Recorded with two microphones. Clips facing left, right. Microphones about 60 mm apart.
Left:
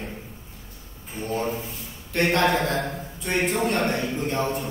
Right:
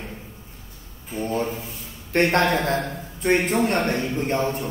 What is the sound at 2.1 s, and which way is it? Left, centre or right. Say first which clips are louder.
Speech: right 3 dB; right.